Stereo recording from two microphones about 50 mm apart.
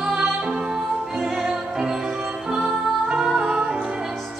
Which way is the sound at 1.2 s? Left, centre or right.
Centre.